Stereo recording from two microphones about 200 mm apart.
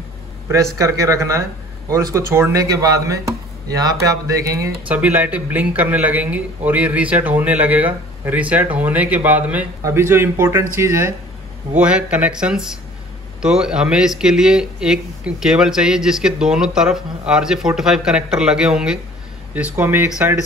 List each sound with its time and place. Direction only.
0.7 s speech: 15° right (ahead or behind)